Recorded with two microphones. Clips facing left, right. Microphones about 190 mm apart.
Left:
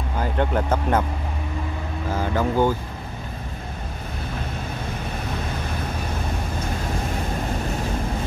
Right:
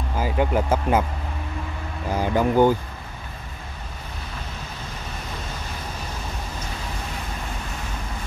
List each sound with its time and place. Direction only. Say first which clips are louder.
0.2 s speech: right 1 dB; 5° right (ahead or behind)
2.1 s speech: right 3 dB; 15° right (ahead or behind)